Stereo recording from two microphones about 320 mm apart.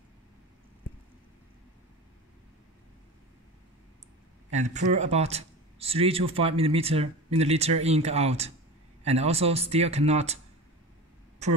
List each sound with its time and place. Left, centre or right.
4.5 s speech: right